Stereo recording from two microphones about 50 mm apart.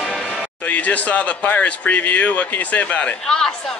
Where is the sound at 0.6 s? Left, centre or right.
Left.